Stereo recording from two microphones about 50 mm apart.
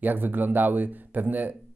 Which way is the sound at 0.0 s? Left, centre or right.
Right.